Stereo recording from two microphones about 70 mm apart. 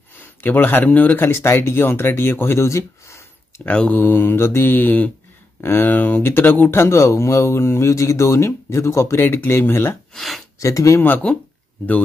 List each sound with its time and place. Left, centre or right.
0.2 s speech: left
1.2 s speech: left
3.6 s speech: centre
4.0 s speech: left
6.8 s speech: left
10.1 s speech: centre
10.6 s speech: left
11.3 s speech: centre